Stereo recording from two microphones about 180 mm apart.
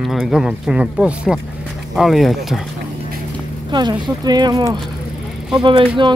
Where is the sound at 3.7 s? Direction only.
25° right (ahead or behind).